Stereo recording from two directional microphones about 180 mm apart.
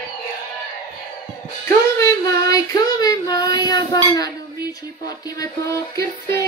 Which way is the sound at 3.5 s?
20° left (ahead or behind).